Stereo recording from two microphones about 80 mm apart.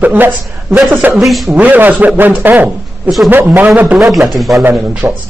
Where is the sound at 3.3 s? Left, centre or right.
Right.